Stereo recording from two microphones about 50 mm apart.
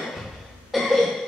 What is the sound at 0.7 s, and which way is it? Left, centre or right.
Cough, centre.